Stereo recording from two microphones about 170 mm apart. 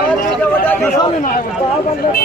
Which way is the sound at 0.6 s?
10° left (ahead or behind).